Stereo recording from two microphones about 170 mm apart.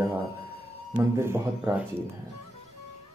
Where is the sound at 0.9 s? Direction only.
15° right (ahead or behind).